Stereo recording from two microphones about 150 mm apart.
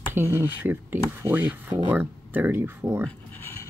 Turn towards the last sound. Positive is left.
turn(degrees=15)  # may be behind; listen again after turning